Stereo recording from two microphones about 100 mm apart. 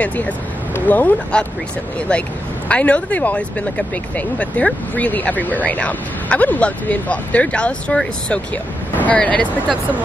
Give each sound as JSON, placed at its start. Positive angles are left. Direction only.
{"t": 0.7, "sound": "speech", "side_deg": 15}